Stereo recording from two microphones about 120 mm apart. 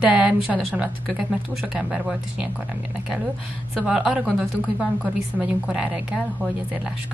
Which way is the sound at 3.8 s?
10° right (ahead or behind).